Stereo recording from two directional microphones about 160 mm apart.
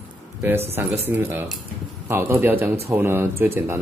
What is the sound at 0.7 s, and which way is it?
Speech, 15° right (ahead or behind).